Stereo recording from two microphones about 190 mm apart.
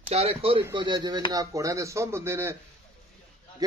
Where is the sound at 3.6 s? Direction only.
20° right (ahead or behind).